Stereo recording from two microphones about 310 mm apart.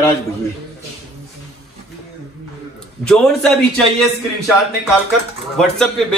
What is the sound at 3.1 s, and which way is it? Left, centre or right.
Speech, centre.